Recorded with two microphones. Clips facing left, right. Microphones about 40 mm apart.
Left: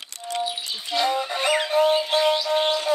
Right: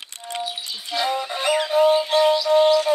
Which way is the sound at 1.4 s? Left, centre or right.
Centre.